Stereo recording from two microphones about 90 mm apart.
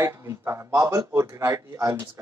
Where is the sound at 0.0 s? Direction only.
30° right (ahead or behind).